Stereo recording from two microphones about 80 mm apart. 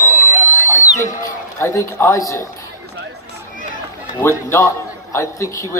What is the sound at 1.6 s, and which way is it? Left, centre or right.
Speech, left.